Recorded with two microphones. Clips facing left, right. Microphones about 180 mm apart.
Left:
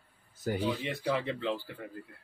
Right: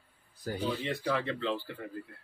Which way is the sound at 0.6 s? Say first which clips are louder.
Right 3 dB; 10° left (ahead or behind).